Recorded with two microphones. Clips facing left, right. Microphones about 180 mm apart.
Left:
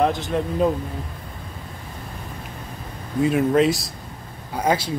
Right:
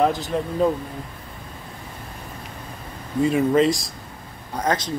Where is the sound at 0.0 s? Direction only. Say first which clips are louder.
Even; centre (ahead or behind).